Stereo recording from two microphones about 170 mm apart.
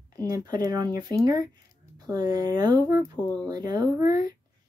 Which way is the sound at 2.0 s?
25° right (ahead or behind).